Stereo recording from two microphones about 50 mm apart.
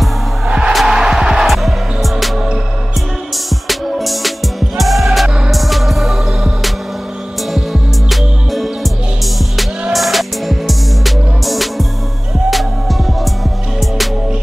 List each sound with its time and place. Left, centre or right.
0.5 s music: centre
3.4 s music: centre
9.9 s music: centre